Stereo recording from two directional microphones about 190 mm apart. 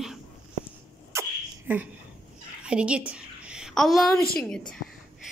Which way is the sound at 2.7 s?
5° right (ahead or behind).